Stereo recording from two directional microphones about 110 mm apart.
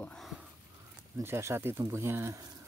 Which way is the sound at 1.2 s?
25° right (ahead or behind).